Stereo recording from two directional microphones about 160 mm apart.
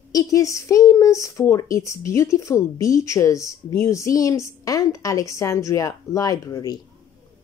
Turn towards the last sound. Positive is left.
turn(degrees=25)  # may be behind; listen again after turning